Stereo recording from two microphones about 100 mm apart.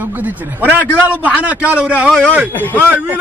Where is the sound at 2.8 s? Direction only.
15° right (ahead or behind).